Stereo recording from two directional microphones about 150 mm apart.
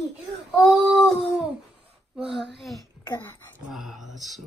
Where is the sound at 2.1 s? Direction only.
Centre (ahead or behind).